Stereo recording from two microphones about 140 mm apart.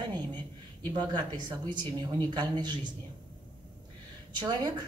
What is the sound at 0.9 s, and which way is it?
Speech, 30° right (ahead or behind).